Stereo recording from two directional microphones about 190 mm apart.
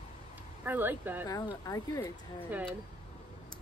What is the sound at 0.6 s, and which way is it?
Speech, 10° right (ahead or behind).